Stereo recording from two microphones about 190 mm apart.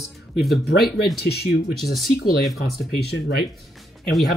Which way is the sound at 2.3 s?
55° left (ahead or behind).